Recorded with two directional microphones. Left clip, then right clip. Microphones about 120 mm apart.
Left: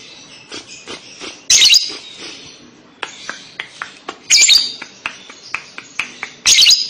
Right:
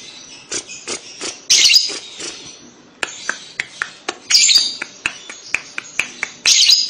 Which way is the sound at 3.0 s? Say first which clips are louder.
Right 4 dB; 40° right (ahead or behind).